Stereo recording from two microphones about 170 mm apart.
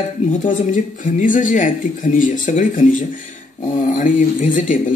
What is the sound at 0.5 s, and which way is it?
Speech, 50° left (ahead or behind).